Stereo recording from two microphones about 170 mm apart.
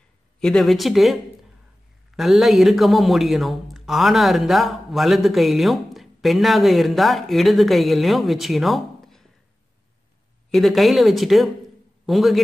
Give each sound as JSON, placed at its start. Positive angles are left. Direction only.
{"t": 0.4, "sound": "speech", "side_deg": 5}
{"t": 10.5, "sound": "speech", "side_deg": 0}